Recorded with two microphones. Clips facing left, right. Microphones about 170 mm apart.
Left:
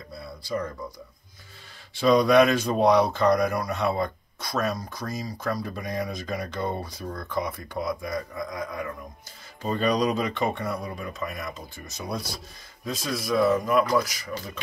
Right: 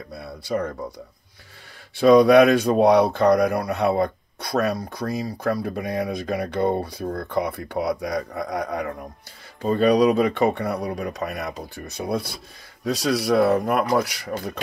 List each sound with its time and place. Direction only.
0.1 s speech: 65° right (ahead or behind)
2.0 s speech: 55° right (ahead or behind)
9.6 s speech: 55° right (ahead or behind)
12.8 s a man's voice: 70° right (ahead or behind)